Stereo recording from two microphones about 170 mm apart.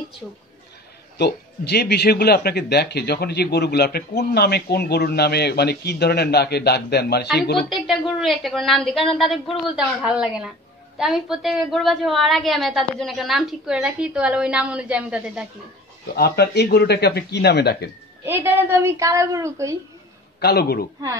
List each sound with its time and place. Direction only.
1.1 s a man's voice: 75° left (ahead or behind)
7.5 s a woman's voice: centre (ahead or behind)
16.2 s a man's voice: 65° left (ahead or behind)
18.2 s a woman's voice: 15° right (ahead or behind)
20.3 s a man's voice: 70° left (ahead or behind)